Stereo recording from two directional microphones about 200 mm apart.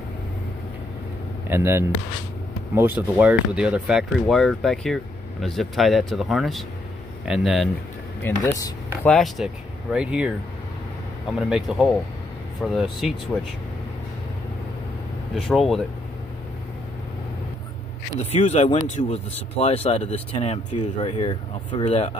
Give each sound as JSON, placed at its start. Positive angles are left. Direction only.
{"t": 1.5, "sound": "speech", "side_deg": -10}
{"t": 8.2, "sound": "speech", "side_deg": 15}
{"t": 9.0, "sound": "speech", "side_deg": 0}
{"t": 11.3, "sound": "speech", "side_deg": -5}
{"t": 15.3, "sound": "speech", "side_deg": 0}
{"t": 18.2, "sound": "speech", "side_deg": 35}